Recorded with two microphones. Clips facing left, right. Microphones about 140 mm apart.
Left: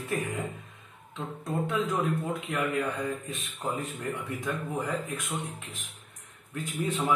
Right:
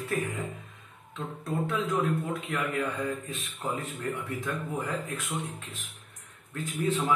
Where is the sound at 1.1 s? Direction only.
20° left (ahead or behind).